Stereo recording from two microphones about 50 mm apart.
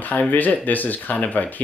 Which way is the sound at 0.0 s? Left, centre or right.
Left.